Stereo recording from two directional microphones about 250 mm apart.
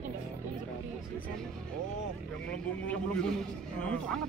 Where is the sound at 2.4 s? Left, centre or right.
Centre.